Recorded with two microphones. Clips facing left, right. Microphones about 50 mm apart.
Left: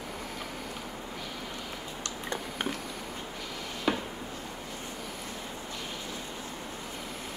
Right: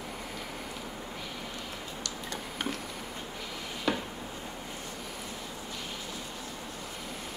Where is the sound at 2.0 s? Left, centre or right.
Left.